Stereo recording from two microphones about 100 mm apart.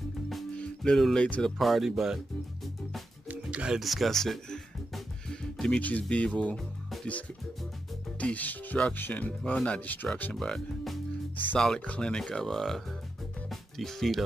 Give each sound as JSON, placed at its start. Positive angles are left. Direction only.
{"t": 0.6, "sound": "speech", "side_deg": 5}
{"t": 1.6, "sound": "speech", "side_deg": 0}
{"t": 3.3, "sound": "speech", "side_deg": -10}
{"t": 8.2, "sound": "speech", "side_deg": 15}
{"t": 10.3, "sound": "speech", "side_deg": 5}
{"t": 13.5, "sound": "music", "side_deg": 5}